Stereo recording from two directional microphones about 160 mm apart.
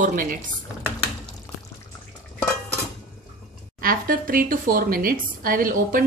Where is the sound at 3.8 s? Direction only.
65° right (ahead or behind).